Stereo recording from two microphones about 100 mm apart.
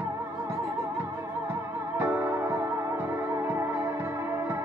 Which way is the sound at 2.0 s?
20° right (ahead or behind).